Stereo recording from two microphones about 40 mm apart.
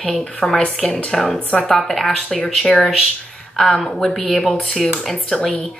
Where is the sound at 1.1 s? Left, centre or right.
Centre.